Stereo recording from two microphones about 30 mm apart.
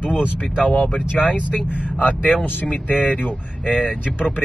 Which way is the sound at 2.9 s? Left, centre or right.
Left.